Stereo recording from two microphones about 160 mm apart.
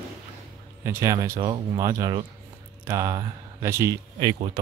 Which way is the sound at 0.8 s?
20° right (ahead or behind).